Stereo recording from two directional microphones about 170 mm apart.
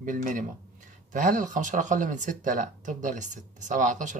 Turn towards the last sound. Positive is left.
turn(degrees=-50)  # may be behind; listen again after turning